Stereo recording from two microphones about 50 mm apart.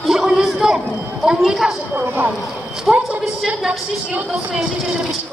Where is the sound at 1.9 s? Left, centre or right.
Right.